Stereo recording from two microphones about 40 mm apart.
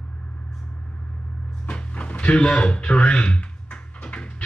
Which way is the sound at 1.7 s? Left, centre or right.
Left.